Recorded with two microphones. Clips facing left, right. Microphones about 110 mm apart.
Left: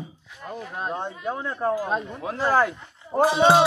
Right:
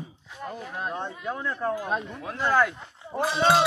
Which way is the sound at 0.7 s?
20° left (ahead or behind).